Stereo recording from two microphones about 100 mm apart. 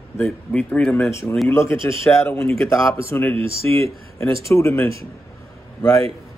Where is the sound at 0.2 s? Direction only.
15° left (ahead or behind).